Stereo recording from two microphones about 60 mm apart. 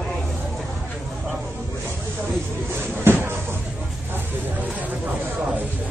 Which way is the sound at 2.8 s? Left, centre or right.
Right.